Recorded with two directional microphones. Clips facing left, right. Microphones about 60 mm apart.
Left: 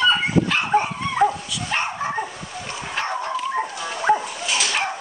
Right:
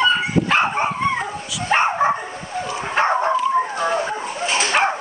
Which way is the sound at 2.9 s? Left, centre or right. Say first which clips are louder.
Right 8 dB; right.